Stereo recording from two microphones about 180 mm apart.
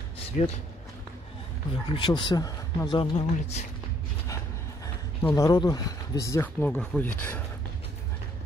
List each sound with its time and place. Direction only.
0.3 s a man's voice: 45° left (ahead or behind)
1.9 s speech: 25° left (ahead or behind)
5.2 s speech: 20° left (ahead or behind)